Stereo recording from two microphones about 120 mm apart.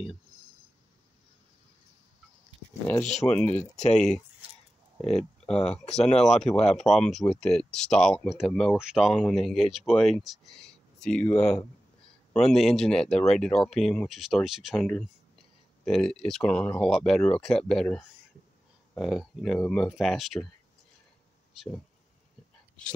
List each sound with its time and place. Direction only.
3.3 s speech: 10° left (ahead or behind)
3.5 s speech: 75° left (ahead or behind)
5.1 s speech: 5° left (ahead or behind)